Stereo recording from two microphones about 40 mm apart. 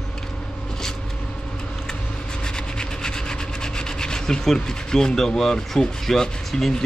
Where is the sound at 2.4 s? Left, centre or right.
Centre.